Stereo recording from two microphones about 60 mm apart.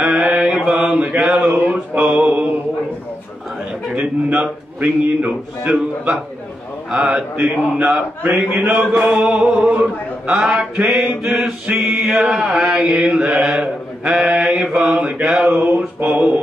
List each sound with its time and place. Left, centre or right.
0.0 s mantra: right
3.9 s chant: right
6.9 s a sound: centre
7.8 s a man's voice: right
8.9 s chant: right
9.2 s a sound: centre
10.4 s chant: centre